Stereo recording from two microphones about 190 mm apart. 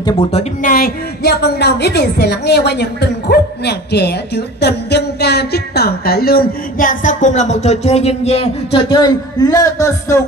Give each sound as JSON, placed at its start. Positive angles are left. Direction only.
{"t": 0.0, "sound": "speech", "side_deg": 30}